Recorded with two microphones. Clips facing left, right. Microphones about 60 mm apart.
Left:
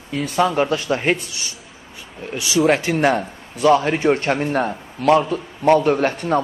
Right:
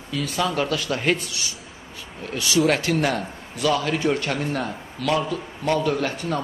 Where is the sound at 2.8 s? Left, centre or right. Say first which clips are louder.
Left 5 dB; left.